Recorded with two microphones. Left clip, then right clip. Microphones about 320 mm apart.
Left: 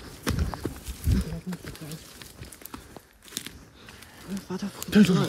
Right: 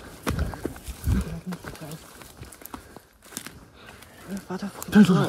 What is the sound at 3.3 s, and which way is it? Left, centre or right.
Walk, centre.